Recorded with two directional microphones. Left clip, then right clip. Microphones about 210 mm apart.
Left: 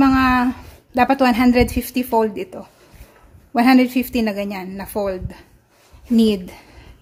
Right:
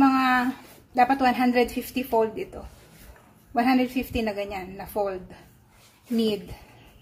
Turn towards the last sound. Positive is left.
turn(degrees=50)  # may be behind; listen again after turning